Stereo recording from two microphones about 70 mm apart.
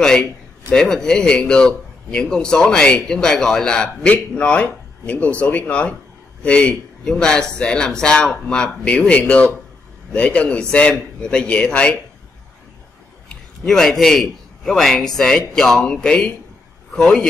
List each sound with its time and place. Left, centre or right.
0.0 s a man's voice: centre
13.7 s a man's voice: centre